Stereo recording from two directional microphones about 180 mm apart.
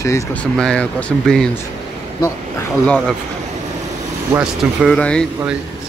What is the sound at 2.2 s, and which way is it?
Speech, 15° left (ahead or behind).